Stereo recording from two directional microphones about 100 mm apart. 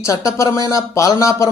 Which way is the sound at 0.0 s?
30° left (ahead or behind).